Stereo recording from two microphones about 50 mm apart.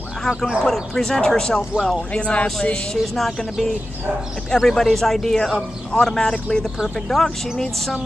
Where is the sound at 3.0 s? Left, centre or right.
Centre.